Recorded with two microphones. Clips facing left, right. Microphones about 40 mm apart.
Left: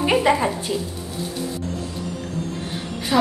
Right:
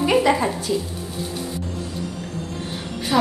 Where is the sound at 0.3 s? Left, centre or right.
Centre.